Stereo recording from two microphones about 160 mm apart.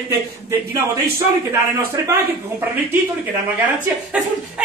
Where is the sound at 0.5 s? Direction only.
15° right (ahead or behind).